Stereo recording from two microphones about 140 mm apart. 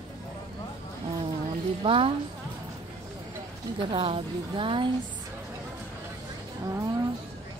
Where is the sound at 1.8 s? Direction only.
40° right (ahead or behind).